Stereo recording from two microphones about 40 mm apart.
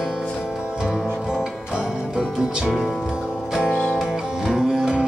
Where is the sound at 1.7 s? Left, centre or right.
Centre.